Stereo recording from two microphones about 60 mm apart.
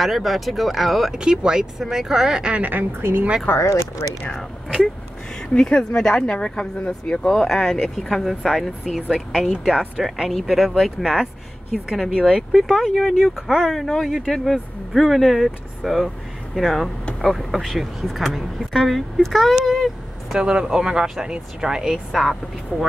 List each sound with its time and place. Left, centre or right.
0.0 s speech: centre
1.1 s speech: centre
2.5 s a woman's voice: right
3.0 s speech: right
3.5 s speech: left
4.3 s speech: centre
8.3 s speech: centre
12.1 s speech: centre
12.9 s speech: centre
13.5 s speech: centre
13.7 s speech: centre
19.6 s a sound: centre
20.3 s speech: centre